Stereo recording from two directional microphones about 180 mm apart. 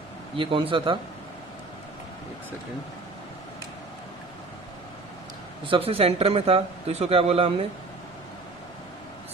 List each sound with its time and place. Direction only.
0.4 s speech: 30° right (ahead or behind)
5.6 s a man's voice: 30° right (ahead or behind)